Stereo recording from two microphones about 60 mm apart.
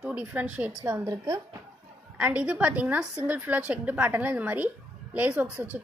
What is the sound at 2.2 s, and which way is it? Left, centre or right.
A woman's voice, right.